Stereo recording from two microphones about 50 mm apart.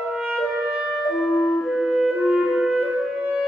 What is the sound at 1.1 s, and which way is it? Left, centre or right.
Music, centre.